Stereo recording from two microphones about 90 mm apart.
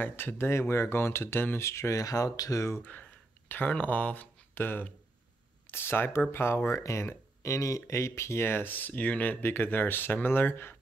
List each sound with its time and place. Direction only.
0.0 s speech: 25° left (ahead or behind)
2.8 s speech: 20° left (ahead or behind)